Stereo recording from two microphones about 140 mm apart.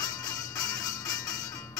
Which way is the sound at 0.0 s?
25° left (ahead or behind).